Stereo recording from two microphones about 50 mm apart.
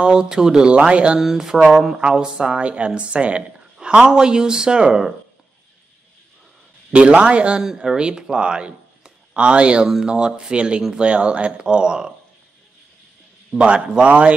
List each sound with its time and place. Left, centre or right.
0.0 s speech: centre
1.2 s a woman's voice: centre
6.9 s a woman's voice: right
7.6 s a woman's voice: centre
13.6 s a woman's voice: right